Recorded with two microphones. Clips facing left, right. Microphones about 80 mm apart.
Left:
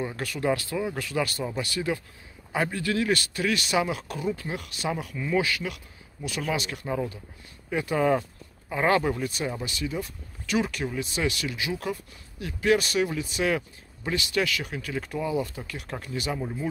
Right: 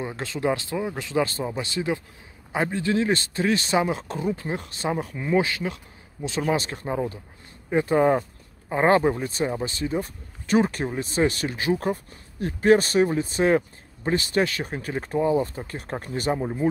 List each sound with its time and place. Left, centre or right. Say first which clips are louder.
0.0 s a man's voice: right 2 dB; right